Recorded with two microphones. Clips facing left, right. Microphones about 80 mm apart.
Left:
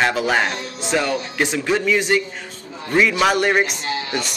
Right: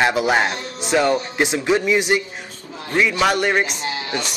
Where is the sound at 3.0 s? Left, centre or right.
Centre.